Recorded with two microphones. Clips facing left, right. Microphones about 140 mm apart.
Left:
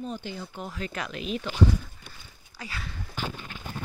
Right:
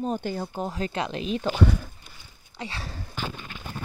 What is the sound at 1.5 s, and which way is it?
Speech, 60° right (ahead or behind).